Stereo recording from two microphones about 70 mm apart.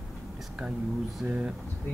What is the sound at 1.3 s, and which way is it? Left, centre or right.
Speech, right.